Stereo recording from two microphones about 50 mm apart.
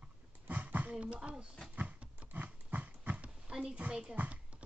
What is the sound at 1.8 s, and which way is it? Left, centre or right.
Horse, right.